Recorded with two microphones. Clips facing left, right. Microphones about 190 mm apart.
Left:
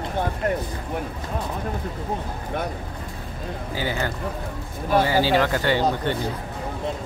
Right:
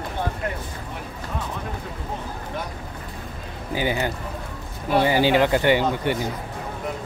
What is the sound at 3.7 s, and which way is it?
Speech, 15° right (ahead or behind).